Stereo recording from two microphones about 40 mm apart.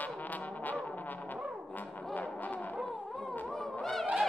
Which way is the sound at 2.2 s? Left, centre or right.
Left.